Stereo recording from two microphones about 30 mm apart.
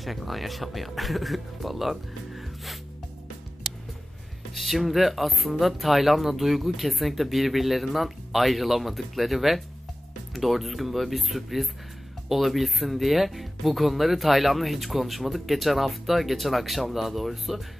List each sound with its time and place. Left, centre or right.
0.0 s speech: centre
4.6 s speech: centre